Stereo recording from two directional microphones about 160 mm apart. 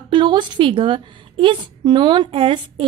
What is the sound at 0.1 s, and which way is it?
A woman's voice, 30° right (ahead or behind).